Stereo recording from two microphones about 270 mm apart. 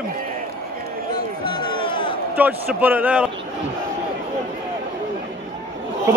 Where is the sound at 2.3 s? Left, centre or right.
Centre.